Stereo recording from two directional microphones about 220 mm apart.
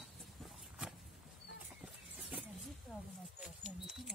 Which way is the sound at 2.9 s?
Centre (ahead or behind).